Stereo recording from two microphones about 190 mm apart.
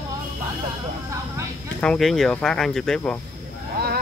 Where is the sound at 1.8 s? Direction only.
Centre (ahead or behind).